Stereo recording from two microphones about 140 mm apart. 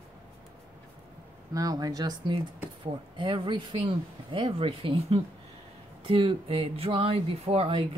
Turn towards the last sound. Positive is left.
turn(degrees=-40)  # may be behind; listen again after turning